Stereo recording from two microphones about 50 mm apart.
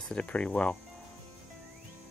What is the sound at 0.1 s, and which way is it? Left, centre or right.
Speech, left.